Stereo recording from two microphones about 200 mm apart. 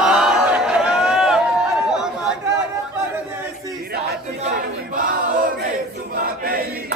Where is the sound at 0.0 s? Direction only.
5° right (ahead or behind).